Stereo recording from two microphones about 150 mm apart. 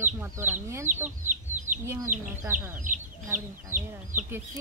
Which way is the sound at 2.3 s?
15° right (ahead or behind).